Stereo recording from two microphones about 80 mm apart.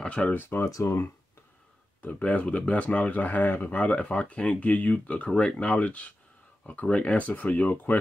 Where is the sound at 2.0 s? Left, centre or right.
Left.